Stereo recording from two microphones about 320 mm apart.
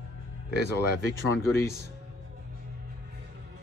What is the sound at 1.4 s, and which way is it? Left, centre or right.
Speech, centre.